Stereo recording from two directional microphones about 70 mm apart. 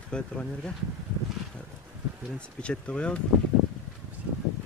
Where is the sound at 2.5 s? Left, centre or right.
Centre.